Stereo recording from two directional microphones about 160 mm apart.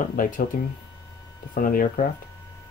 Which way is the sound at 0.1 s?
60° left (ahead or behind).